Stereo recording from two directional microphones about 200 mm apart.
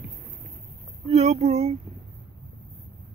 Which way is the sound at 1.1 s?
30° right (ahead or behind).